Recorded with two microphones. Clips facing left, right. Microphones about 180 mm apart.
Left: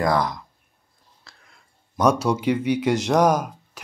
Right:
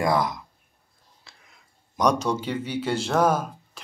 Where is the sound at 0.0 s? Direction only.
25° right (ahead or behind).